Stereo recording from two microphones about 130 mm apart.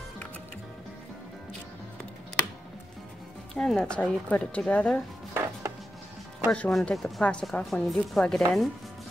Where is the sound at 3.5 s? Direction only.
5° left (ahead or behind).